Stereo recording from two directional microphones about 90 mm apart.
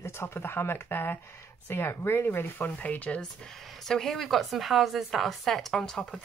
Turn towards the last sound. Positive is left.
turn(degrees=10)  # may be behind; listen again after turning